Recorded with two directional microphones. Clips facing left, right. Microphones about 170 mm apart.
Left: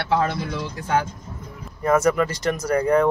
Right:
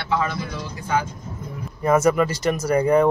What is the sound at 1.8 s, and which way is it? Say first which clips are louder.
Speech: right 1 dB; 5° right (ahead or behind).